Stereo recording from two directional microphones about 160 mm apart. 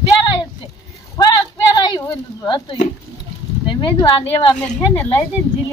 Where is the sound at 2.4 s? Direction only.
30° left (ahead or behind).